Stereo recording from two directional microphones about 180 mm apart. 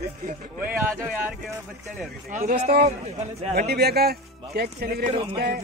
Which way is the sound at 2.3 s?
45° right (ahead or behind).